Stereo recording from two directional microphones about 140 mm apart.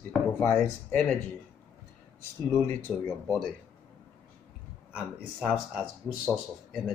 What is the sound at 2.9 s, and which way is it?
Speech, 10° left (ahead or behind).